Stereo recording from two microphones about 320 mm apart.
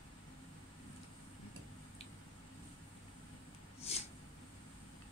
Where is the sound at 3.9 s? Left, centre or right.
Centre.